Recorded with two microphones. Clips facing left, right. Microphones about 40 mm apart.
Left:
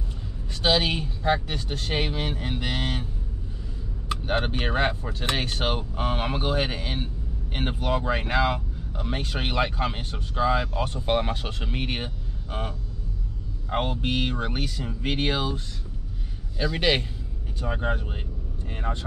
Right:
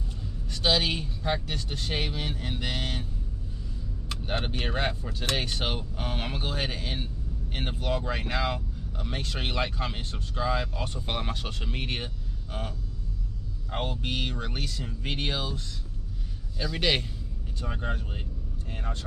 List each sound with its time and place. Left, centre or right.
0.5 s speech: left
4.1 s speech: centre